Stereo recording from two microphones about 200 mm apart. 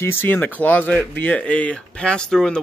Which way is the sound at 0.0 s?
10° left (ahead or behind).